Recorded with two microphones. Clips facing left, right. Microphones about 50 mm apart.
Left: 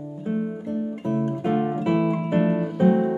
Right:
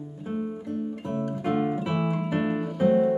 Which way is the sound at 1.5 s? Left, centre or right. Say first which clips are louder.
Left 3 dB; centre.